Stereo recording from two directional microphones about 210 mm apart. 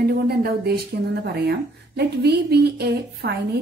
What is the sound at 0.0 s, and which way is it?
A woman's voice, 45° right (ahead or behind).